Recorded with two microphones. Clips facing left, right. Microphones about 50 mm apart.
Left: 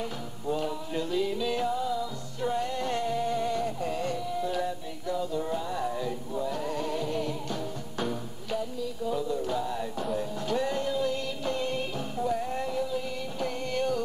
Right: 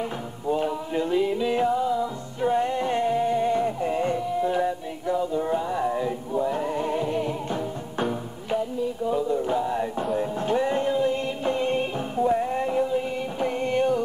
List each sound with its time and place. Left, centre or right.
0.5 s music: right